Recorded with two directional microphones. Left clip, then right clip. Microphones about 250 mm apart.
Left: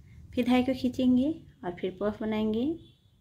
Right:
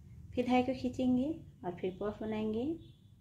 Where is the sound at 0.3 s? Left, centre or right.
Left.